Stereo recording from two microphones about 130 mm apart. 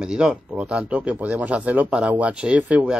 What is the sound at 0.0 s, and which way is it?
Speech, 5° right (ahead or behind).